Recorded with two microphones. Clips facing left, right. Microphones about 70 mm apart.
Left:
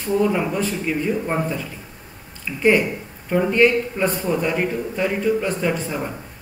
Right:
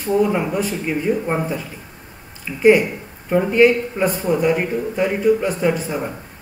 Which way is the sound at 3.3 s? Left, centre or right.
Centre.